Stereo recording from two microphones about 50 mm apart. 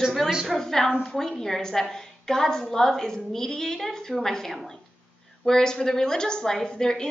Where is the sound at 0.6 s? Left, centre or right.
Centre.